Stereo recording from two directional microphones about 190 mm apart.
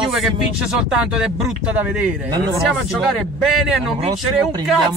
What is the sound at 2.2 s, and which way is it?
Speech, 20° right (ahead or behind).